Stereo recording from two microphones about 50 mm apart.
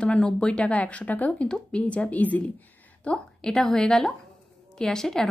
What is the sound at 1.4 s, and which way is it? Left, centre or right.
Speech, centre.